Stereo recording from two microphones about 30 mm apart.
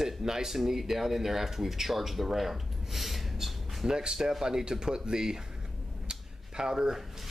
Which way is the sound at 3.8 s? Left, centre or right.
Right.